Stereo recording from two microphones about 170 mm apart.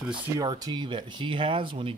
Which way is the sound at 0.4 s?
25° right (ahead or behind).